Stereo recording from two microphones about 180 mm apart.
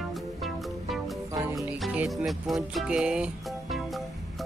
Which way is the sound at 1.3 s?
20° right (ahead or behind).